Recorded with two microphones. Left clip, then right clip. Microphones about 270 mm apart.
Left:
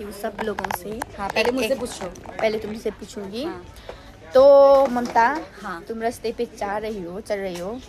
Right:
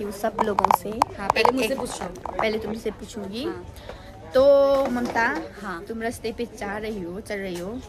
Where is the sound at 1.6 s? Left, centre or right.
Centre.